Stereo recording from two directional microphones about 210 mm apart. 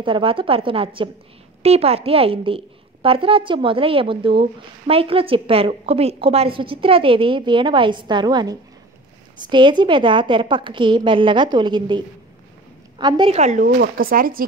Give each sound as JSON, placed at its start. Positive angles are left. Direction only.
{"t": 0.0, "sound": "a woman's voice", "side_deg": -25}
{"t": 13.0, "sound": "speech", "side_deg": -25}